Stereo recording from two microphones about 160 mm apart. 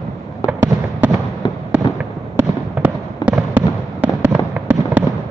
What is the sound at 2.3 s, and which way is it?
Fireworks, 10° right (ahead or behind).